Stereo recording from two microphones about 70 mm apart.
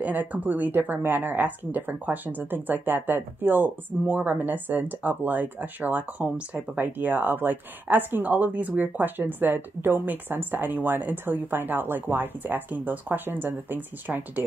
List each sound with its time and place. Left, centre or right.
0.0 s a woman's voice: right